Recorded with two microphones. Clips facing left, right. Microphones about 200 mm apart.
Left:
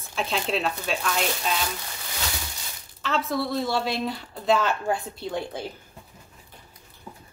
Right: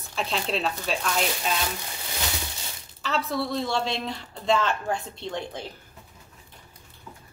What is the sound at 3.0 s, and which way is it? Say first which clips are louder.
A woman's voice: left 1 dB; centre (ahead or behind).